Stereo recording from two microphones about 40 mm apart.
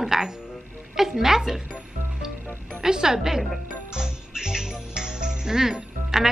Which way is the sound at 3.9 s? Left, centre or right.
Centre.